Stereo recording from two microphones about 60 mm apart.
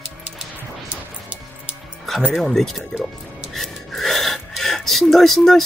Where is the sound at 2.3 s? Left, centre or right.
Centre.